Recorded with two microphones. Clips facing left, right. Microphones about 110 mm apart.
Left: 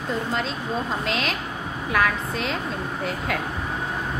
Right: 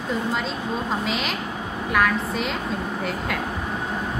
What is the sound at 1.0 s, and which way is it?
A woman's voice, centre (ahead or behind).